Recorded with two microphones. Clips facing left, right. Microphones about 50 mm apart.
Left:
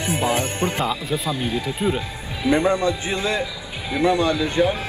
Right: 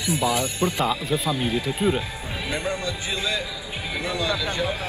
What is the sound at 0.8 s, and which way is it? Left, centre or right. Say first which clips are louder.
Speech: even; centre.